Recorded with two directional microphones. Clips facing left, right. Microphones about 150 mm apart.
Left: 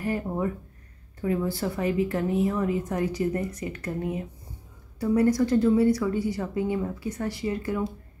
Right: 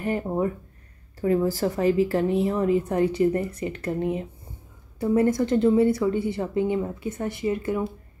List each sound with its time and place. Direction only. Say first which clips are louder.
0.0 s a woman's voice: right 3 dB; 25° right (ahead or behind)
1.2 s a woman's voice: right 5 dB; 35° right (ahead or behind); by 7.8 s 20° right (ahead or behind)